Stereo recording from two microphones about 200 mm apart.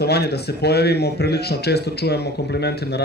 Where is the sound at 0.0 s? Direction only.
55° left (ahead or behind).